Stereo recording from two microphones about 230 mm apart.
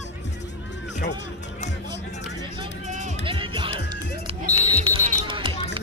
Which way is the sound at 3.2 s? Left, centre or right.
Right.